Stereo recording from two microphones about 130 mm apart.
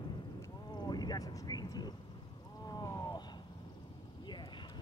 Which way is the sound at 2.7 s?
30° left (ahead or behind).